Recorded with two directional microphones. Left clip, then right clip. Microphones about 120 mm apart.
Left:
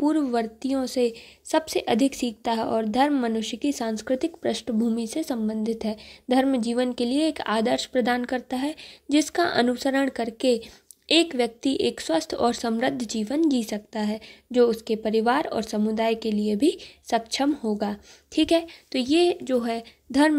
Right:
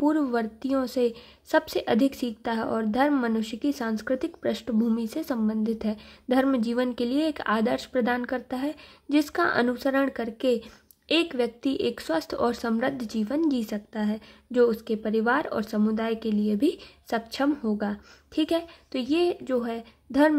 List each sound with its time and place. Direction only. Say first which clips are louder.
0.0 s a woman's voice: left 1 dB; 10° left (ahead or behind)
18.3 s speech: left 4 dB; 40° left (ahead or behind)